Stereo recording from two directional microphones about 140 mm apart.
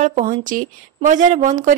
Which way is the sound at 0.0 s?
65° right (ahead or behind).